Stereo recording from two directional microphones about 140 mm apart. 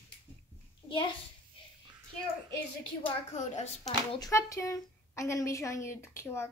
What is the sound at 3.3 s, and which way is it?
Speech, 50° left (ahead or behind).